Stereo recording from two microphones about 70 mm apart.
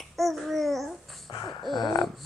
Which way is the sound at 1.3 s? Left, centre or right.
Left.